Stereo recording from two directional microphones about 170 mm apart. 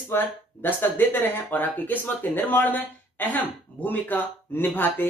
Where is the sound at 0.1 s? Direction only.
10° left (ahead or behind).